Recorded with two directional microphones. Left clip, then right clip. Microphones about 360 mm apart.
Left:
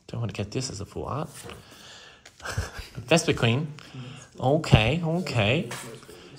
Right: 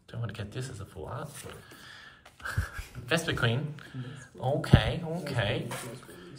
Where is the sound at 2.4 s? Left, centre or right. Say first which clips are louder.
Left 2 dB; centre.